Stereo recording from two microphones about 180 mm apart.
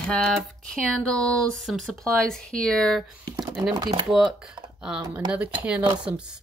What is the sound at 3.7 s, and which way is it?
Speech, 25° right (ahead or behind).